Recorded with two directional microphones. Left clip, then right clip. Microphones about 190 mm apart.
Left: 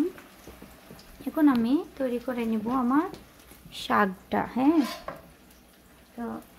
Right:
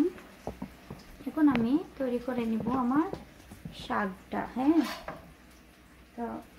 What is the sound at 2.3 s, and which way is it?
Speech, 25° left (ahead or behind).